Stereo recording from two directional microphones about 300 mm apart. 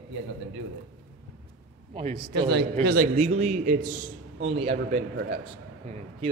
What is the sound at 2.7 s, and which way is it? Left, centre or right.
Speech, right.